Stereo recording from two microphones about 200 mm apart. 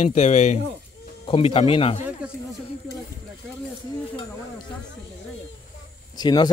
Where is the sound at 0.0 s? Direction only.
35° left (ahead or behind).